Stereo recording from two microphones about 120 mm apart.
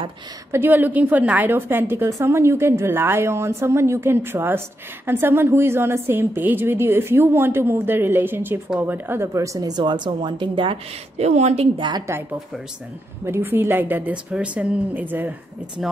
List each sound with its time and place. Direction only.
0.5 s a woman's voice: 20° right (ahead or behind); by 10.8 s 45° right (ahead or behind)
11.1 s a woman's voice: 65° right (ahead or behind); by 12.0 s 45° right (ahead or behind)
13.2 s a woman's voice: 20° right (ahead or behind)
15.8 s speech: centre (ahead or behind)